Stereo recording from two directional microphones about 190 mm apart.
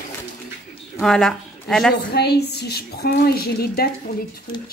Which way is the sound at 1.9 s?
60° left (ahead or behind).